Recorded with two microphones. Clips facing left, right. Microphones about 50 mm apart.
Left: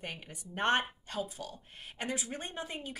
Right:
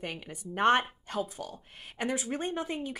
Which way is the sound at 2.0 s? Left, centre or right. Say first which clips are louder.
Right 6 dB; right.